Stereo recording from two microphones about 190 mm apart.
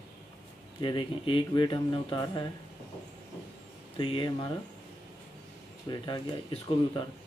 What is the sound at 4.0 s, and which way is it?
Speech, 25° left (ahead or behind).